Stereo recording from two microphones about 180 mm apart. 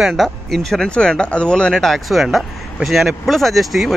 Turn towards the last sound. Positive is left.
turn(degrees=0)  # may be behind; listen again after turning